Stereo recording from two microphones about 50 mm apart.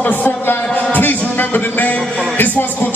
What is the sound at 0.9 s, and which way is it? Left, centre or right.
Music, left.